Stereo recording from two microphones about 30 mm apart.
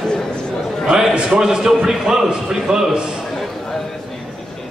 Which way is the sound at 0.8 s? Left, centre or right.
Right.